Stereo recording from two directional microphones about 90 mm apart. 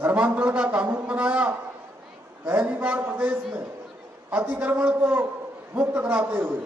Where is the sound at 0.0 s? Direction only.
15° right (ahead or behind).